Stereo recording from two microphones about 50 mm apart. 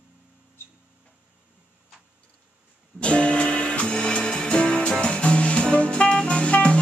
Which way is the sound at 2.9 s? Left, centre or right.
Left.